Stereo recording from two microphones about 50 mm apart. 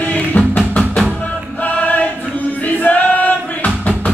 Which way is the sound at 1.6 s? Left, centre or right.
Left.